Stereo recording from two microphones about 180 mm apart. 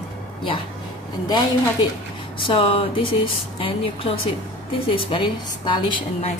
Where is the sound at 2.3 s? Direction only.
30° left (ahead or behind).